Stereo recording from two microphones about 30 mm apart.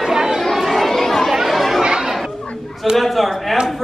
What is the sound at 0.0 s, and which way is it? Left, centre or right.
Chatter, centre.